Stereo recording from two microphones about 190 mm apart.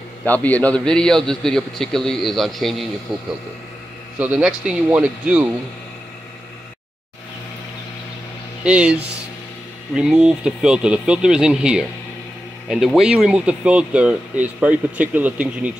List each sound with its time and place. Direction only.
0.2 s a man's voice: 10° left (ahead or behind); by 5.5 s 5° right (ahead or behind)
8.6 s a man's voice: 5° right (ahead or behind)
9.9 s a man's voice: 5° right (ahead or behind)